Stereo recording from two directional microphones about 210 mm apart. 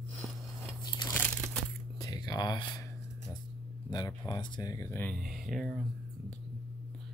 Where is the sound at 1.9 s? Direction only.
20° left (ahead or behind).